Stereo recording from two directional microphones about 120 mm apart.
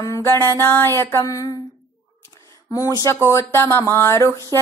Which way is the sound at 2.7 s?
25° left (ahead or behind).